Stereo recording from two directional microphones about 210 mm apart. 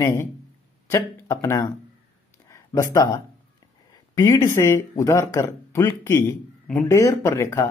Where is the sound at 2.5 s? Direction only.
15° left (ahead or behind).